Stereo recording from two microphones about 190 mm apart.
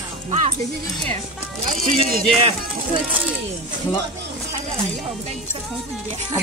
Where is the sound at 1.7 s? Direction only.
45° right (ahead or behind).